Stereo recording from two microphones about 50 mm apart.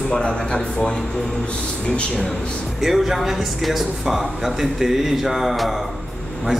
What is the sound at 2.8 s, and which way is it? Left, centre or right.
Speech, centre.